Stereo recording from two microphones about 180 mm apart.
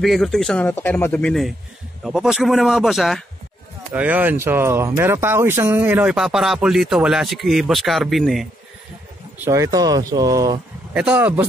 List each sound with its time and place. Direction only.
0.0 s speech: centre (ahead or behind)
9.4 s speech: 15° right (ahead or behind)
10.9 s speech: 5° right (ahead or behind)